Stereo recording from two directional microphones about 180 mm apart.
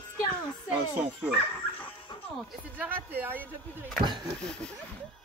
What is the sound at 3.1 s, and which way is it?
Speech, 10° right (ahead or behind).